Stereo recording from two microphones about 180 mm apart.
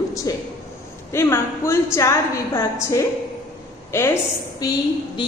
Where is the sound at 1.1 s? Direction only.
15° left (ahead or behind).